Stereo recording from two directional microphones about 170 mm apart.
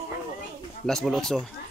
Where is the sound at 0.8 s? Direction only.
Centre (ahead or behind).